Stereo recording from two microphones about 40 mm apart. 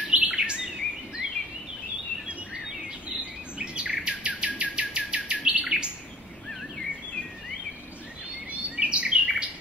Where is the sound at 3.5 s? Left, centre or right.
Right.